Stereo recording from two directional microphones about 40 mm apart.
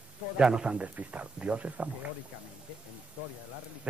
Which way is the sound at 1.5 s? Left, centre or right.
Right.